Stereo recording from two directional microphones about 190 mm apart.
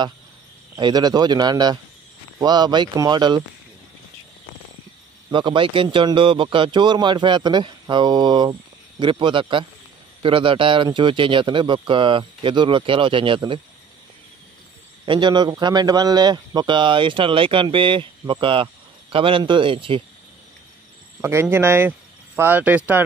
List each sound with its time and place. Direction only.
0.7 s a man's voice: 20° right (ahead or behind)
5.3 s a man's voice: 25° right (ahead or behind)
15.0 s a man's voice: 25° right (ahead or behind)
21.2 s speech: 15° right (ahead or behind)